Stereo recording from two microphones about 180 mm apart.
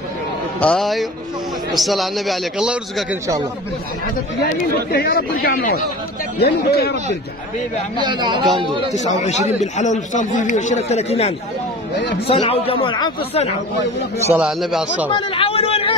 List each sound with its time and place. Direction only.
0.6 s a man's voice: 5° left (ahead or behind)
4.9 s speech: 55° left (ahead or behind)
6.4 s speech: 65° left (ahead or behind)
8.0 s speech: 25° right (ahead or behind)
8.9 s speech: 40° left (ahead or behind)
14.3 s a man's voice: 5° right (ahead or behind)
15.1 s speech: 30° left (ahead or behind)